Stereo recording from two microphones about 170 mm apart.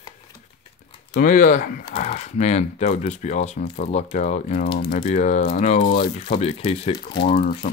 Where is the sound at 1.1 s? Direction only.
50° left (ahead or behind).